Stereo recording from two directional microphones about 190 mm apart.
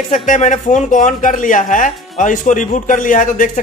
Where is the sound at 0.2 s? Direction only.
40° left (ahead or behind).